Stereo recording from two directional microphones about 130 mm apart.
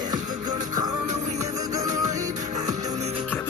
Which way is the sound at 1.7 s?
25° right (ahead or behind).